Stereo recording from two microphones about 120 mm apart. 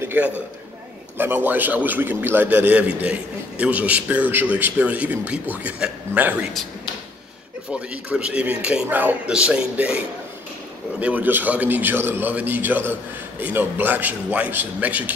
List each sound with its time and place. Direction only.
0.0 s a sound: 15° right (ahead or behind)
1.1 s a man's voice: 15° right (ahead or behind)
7.7 s a man's voice: 10° right (ahead or behind)